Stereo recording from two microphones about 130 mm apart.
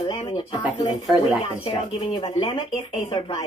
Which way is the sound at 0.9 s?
Centre (ahead or behind).